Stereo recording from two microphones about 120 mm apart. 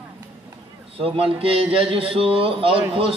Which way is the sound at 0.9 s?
50° right (ahead or behind).